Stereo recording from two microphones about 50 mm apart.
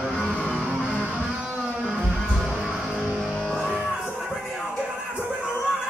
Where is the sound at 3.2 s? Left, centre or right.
Centre.